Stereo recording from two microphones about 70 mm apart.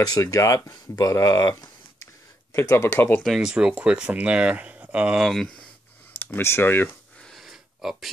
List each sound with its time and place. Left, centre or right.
0.2 s speech: left
2.5 s speech: left
3.3 s speech: centre
5.2 s speech: centre
6.1 s speech: left
7.2 s wheeze: centre
7.4 s a sound: centre